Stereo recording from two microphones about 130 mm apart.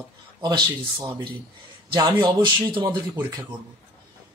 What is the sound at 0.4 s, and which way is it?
Speech, 35° right (ahead or behind).